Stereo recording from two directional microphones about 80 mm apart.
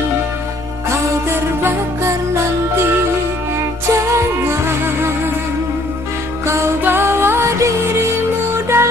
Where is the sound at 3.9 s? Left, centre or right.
Right.